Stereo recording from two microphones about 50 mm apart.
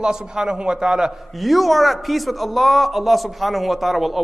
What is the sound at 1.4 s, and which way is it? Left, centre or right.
A man's voice, centre.